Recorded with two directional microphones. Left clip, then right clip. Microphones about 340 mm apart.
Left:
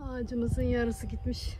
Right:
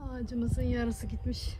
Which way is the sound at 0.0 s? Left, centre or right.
Centre.